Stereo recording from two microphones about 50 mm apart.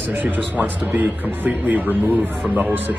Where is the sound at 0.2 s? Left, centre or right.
Right.